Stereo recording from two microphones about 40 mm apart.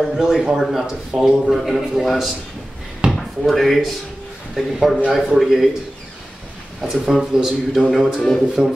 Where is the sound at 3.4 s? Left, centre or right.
Centre.